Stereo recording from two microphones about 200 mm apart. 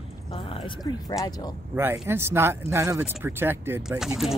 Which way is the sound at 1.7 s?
10° right (ahead or behind).